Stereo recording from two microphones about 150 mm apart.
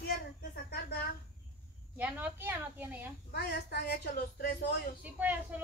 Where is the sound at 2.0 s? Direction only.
10° right (ahead or behind).